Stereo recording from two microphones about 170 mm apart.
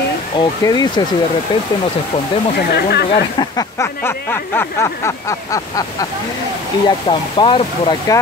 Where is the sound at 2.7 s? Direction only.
70° left (ahead or behind).